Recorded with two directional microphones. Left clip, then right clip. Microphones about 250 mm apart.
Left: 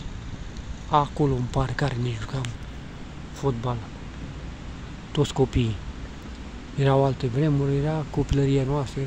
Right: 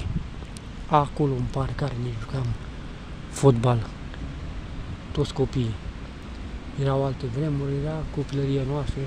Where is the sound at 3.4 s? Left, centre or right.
Centre.